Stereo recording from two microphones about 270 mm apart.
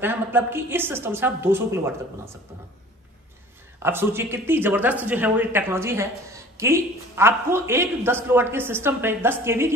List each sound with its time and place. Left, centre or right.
0.0 s a woman's voice: centre
3.8 s a woman's voice: centre